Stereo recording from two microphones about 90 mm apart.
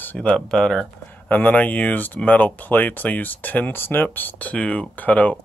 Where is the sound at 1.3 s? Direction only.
20° left (ahead or behind).